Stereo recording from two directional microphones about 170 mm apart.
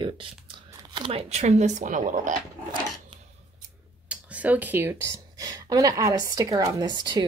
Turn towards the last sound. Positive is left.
turn(degrees=-25)  # may be behind; listen again after turning